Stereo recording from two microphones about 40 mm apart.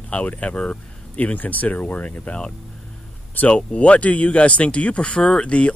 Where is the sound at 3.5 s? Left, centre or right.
Left.